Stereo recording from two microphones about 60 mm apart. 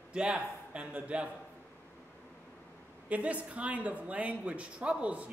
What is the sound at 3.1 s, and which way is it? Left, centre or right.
Speech, right.